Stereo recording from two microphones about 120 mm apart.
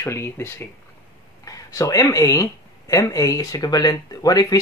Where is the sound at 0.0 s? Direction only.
20° left (ahead or behind).